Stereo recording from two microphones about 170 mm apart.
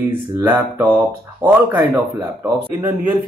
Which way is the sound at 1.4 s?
30° right (ahead or behind).